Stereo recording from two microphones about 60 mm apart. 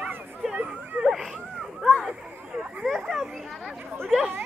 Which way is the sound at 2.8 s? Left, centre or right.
Centre.